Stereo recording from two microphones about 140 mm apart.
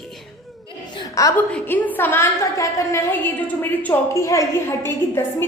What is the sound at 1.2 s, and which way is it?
Speech, 25° left (ahead or behind).